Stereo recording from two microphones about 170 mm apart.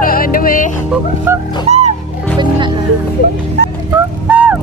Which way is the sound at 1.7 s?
40° right (ahead or behind).